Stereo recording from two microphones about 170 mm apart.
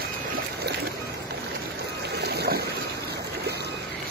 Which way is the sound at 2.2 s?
70° right (ahead or behind).